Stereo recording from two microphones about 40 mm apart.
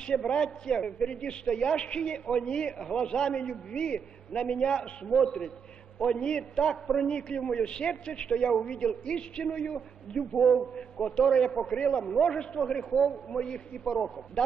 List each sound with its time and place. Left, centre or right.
0.3 s a man's voice: left
10.3 s a man's voice: centre
10.8 s a man's voice: centre